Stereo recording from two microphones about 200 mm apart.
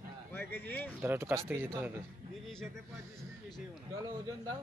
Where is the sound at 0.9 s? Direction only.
10° right (ahead or behind).